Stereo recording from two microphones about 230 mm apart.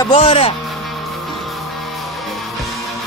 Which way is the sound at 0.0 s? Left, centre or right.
Left.